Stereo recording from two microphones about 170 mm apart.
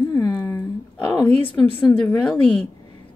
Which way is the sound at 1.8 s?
10° left (ahead or behind).